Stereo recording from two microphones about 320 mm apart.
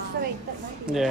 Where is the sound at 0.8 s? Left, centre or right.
Centre.